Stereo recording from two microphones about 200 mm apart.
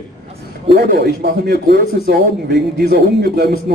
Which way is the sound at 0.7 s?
55° right (ahead or behind).